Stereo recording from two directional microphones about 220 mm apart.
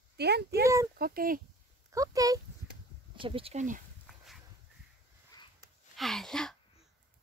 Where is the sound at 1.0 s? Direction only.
40° right (ahead or behind).